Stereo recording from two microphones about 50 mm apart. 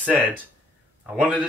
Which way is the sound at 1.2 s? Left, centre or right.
Right.